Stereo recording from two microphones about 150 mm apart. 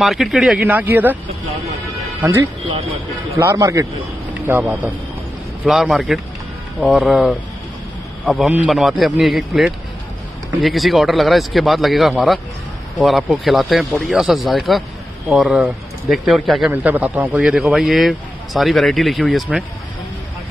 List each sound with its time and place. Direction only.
0.0 s a man's voice: centre (ahead or behind)
3.3 s a man's voice: 20° right (ahead or behind)
5.7 s a man's voice: centre (ahead or behind)